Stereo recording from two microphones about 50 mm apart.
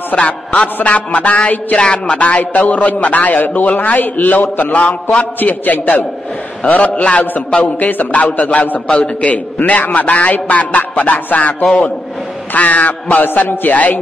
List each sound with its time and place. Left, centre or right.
0.1 s a man's voice: left
11.6 s a man's voice: centre
12.5 s speech: left